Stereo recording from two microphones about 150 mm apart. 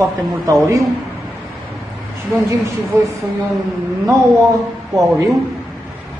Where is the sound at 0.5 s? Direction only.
20° right (ahead or behind).